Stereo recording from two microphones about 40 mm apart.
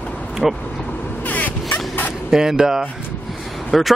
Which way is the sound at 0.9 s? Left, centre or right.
Left.